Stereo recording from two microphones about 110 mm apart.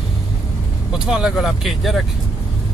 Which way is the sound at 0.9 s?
5° right (ahead or behind).